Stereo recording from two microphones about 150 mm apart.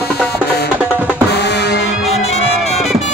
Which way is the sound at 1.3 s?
90° left.